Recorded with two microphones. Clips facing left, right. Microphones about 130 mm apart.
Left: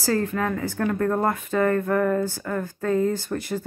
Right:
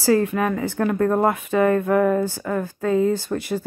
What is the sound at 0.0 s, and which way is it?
A woman's voice, 15° right (ahead or behind).